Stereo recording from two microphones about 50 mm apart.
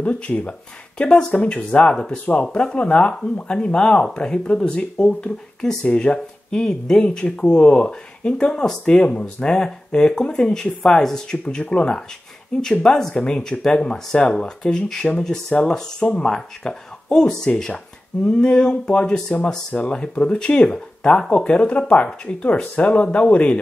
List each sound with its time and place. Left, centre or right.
0.0 s speech: left; by 11.3 s centre
11.4 s speech: left